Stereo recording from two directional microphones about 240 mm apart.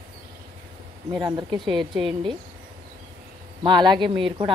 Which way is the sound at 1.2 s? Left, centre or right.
Centre.